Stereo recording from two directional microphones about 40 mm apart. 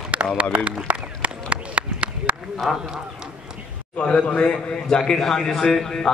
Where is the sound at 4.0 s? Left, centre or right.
Left; by 6.1 s centre.